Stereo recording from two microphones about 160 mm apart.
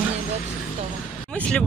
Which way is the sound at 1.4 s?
5° left (ahead or behind).